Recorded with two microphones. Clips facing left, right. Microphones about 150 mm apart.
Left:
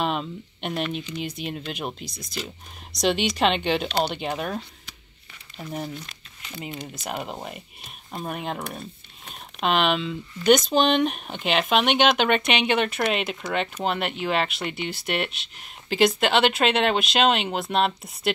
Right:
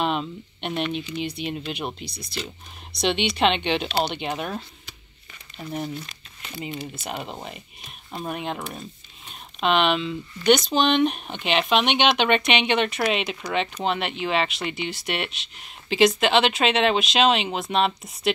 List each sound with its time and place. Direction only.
0.0 s speech: centre (ahead or behind)
1.1 s speech: 45° left (ahead or behind)
1.8 s speech: centre (ahead or behind)
2.0 s speech: 45° left (ahead or behind)
3.3 s speech: centre (ahead or behind)